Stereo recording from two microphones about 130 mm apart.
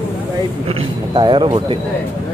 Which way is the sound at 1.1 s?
35° right (ahead or behind).